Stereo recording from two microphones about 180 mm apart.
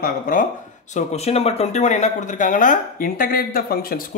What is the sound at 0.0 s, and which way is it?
Speech, 50° left (ahead or behind).